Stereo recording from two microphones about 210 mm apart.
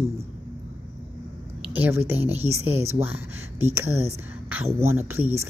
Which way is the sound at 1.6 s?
5° right (ahead or behind).